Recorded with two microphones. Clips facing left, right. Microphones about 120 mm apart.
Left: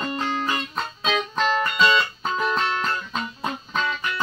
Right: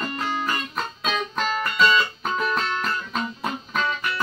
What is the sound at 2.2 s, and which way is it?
Music, 25° left (ahead or behind).